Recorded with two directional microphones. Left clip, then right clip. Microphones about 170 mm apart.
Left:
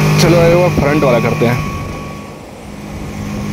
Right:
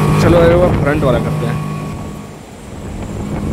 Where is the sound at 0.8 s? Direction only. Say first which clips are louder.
Left 3 dB; 35° left (ahead or behind).